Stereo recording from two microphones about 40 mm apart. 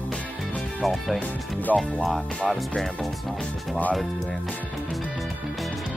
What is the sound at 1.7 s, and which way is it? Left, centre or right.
Speech, centre.